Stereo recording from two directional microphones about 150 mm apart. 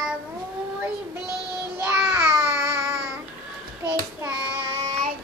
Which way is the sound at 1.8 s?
10° right (ahead or behind).